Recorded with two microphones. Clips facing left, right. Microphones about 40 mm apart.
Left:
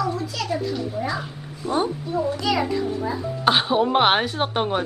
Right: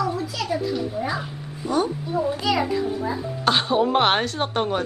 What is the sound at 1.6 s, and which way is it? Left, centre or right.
Speech, left.